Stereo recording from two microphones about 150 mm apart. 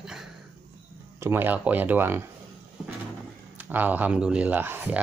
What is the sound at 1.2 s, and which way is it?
Speech, 15° right (ahead or behind).